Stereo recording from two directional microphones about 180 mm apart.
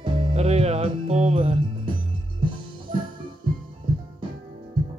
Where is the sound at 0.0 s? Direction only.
30° right (ahead or behind).